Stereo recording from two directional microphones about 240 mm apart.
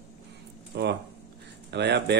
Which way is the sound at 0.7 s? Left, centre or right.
Right.